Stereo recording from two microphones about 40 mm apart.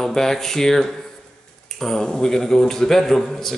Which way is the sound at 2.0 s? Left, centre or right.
Centre.